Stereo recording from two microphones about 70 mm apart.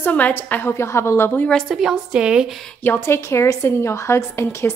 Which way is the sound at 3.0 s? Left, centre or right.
Left.